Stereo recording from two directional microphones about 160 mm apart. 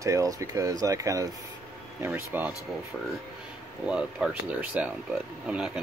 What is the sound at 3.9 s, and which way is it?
Speech, 5° right (ahead or behind).